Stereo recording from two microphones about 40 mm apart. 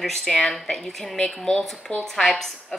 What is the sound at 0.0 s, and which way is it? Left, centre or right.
A woman's voice, centre.